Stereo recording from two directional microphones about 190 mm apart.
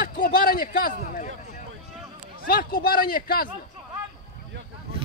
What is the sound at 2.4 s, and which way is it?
Speech, 50° left (ahead or behind).